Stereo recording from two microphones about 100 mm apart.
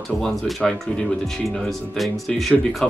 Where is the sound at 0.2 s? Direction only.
5° left (ahead or behind).